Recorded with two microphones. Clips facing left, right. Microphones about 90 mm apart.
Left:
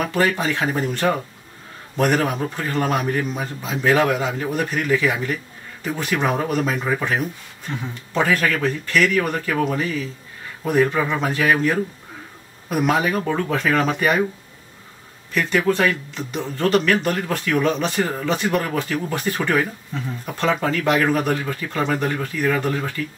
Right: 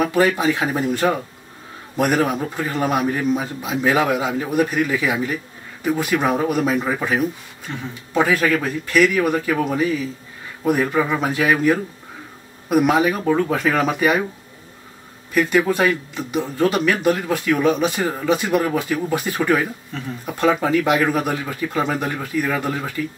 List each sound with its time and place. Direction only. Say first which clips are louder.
0.0 s speech: right 3 dB; 10° right (ahead or behind)
15.3 s speech: right 2 dB; 10° right (ahead or behind)